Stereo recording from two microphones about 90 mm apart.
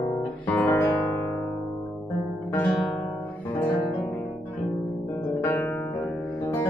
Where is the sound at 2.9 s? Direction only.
20° left (ahead or behind).